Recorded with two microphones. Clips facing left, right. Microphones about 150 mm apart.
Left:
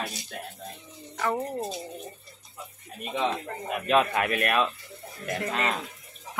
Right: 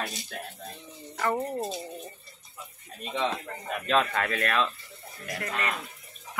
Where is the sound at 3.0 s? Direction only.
10° left (ahead or behind).